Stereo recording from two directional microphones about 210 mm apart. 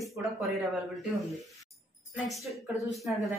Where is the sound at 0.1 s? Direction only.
Centre (ahead or behind).